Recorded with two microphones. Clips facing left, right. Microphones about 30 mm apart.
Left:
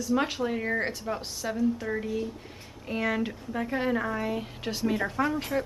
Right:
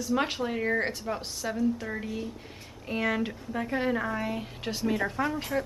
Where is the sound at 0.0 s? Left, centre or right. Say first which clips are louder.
Left 1 dB; centre.